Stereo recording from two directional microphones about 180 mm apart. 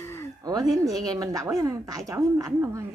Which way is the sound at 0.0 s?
15° left (ahead or behind).